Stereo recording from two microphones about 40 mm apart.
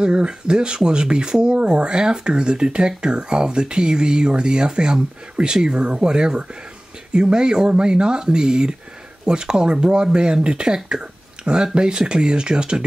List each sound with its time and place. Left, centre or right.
0.0 s speech: right